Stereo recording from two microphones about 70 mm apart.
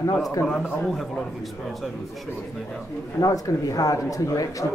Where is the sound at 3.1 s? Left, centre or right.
Left.